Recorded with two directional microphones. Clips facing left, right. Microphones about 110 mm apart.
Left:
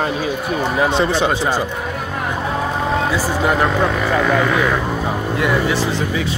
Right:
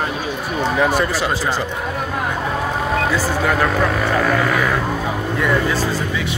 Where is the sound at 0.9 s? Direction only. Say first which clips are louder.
Left 2 dB; 25° left (ahead or behind).